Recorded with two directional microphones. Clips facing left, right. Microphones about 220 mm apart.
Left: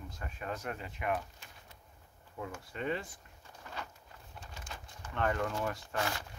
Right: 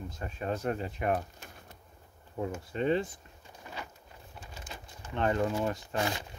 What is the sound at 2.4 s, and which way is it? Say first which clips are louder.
Speech: right 8 dB; 25° right (ahead or behind).